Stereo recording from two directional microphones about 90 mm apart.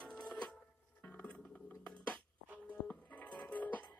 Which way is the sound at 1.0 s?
15° left (ahead or behind).